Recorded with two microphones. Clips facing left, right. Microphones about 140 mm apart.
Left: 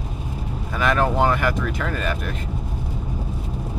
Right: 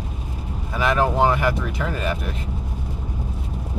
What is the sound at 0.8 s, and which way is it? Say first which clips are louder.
Speech: right 1 dB; 20° right (ahead or behind).